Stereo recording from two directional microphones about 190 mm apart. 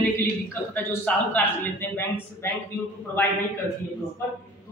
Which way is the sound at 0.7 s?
10° left (ahead or behind).